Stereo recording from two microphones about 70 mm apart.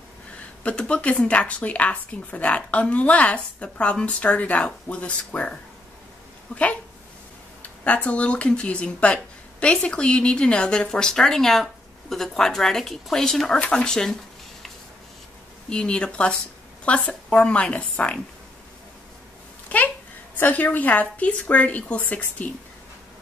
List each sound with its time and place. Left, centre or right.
0.7 s speech: centre
15.7 s speech: centre
20.3 s speech: left